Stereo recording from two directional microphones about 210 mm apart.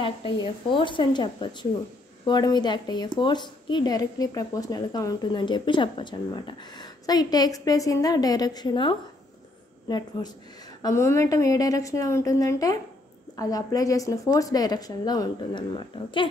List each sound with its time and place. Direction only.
0.0 s a woman's voice: 25° left (ahead or behind)